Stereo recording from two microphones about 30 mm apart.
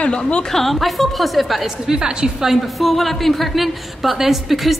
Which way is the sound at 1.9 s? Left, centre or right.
Right.